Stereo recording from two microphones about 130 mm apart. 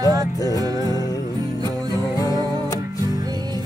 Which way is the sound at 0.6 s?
30° right (ahead or behind).